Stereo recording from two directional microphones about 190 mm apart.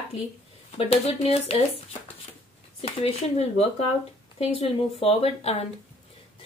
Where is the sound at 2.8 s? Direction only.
35° left (ahead or behind).